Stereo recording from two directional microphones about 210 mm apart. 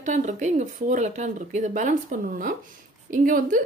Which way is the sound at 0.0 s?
35° right (ahead or behind).